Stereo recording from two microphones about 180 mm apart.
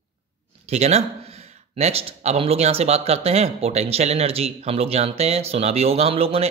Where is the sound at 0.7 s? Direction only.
35° right (ahead or behind).